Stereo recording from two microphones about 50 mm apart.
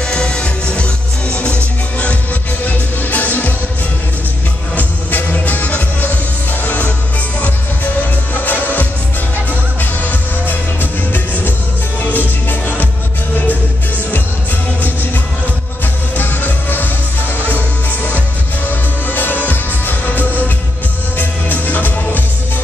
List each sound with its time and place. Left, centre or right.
0.0 s music: centre
2.6 s music: left
4.7 s music: left
8.4 s music: left
12.0 s music: left
16.2 s music: left
18.7 s music: left